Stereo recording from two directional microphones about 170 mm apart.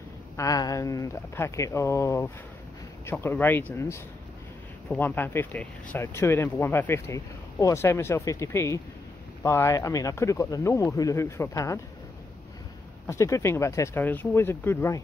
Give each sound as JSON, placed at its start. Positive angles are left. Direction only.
{"t": 0.4, "sound": "speech", "side_deg": 20}
{"t": 13.0, "sound": "speech", "side_deg": 15}